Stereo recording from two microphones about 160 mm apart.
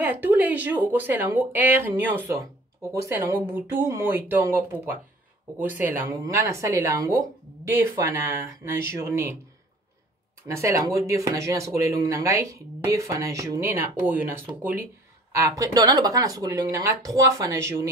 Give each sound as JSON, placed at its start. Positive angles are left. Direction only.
{"t": 0.0, "sound": "speech", "side_deg": -10}
{"t": 10.4, "sound": "speech", "side_deg": -15}